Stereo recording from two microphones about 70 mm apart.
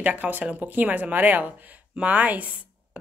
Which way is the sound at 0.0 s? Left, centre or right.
Right.